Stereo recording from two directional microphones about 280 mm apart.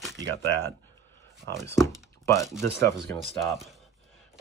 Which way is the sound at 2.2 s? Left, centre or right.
Centre.